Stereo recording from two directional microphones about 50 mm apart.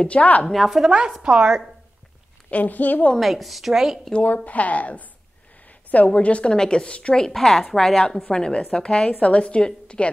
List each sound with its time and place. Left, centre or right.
0.0 s a woman's voice: left
0.5 s a woman's voice: centre
1.2 s a woman's voice: centre
2.5 s a woman's voice: left
3.2 s a woman's voice: centre
4.1 s a woman's voice: left
6.0 s a woman's voice: left
7.2 s speech: centre
8.3 s a woman's voice: centre